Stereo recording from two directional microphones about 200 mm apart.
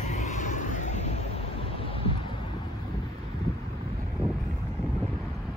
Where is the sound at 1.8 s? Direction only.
25° left (ahead or behind).